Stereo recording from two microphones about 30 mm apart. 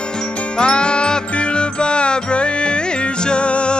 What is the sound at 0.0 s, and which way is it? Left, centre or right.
Music, left.